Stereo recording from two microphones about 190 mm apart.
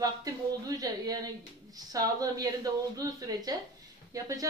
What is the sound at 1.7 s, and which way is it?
Speech, 20° right (ahead or behind).